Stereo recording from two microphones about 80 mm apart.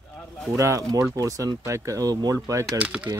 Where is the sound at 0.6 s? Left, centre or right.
Right.